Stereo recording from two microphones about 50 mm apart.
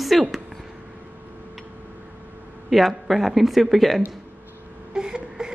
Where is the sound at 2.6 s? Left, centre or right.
Centre.